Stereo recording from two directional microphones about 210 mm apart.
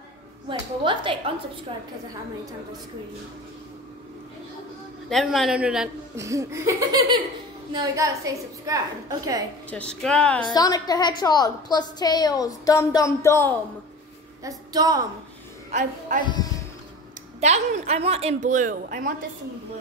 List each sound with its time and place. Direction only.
0.5 s a woman's voice: 25° right (ahead or behind)
5.1 s a man's voice: centre (ahead or behind)
6.1 s a woman's voice: 15° right (ahead or behind)
9.7 s a man's voice: 5° left (ahead or behind)
10.4 s a woman's voice: 20° left (ahead or behind)
14.7 s a woman's voice: 20° right (ahead or behind)
15.7 s a woman's voice: 35° right (ahead or behind)
17.4 s a woman's voice: 30° right (ahead or behind)